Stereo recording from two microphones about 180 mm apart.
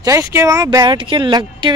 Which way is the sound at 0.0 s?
15° right (ahead or behind).